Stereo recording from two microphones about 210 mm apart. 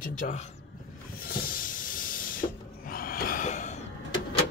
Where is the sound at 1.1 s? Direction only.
45° left (ahead or behind).